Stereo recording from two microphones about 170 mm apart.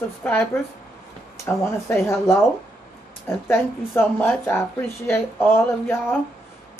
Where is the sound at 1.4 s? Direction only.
15° left (ahead or behind).